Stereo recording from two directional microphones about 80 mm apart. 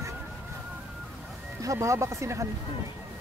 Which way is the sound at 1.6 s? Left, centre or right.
Right.